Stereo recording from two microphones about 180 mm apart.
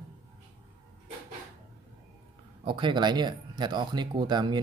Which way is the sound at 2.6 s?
25° right (ahead or behind).